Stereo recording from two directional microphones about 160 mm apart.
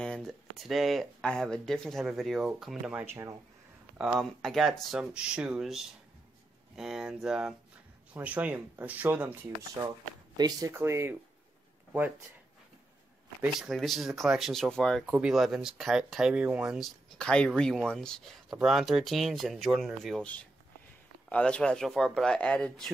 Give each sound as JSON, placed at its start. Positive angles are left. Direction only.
{"t": 0.0, "sound": "speech", "side_deg": 5}
{"t": 4.0, "sound": "speech", "side_deg": 0}
{"t": 10.3, "sound": "speech", "side_deg": -25}
{"t": 13.4, "sound": "speech", "side_deg": 0}
{"t": 21.3, "sound": "speech", "side_deg": 5}